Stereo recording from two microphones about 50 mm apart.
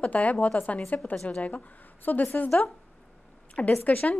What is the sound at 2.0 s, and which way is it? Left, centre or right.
Speech, left.